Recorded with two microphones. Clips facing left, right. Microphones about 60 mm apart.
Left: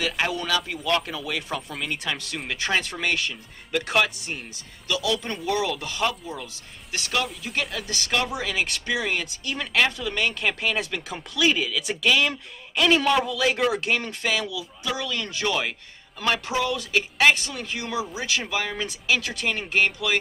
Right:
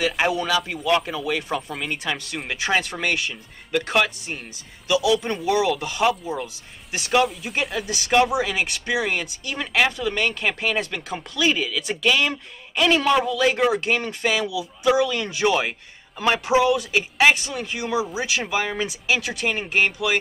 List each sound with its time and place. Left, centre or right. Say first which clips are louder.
0.3 s speech: right 4 dB; centre
4.8 s speech: right 6 dB; centre